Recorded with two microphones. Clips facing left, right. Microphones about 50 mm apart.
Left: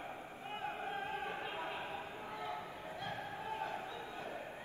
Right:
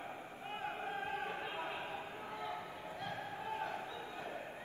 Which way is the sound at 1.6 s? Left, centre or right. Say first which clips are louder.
Even; right.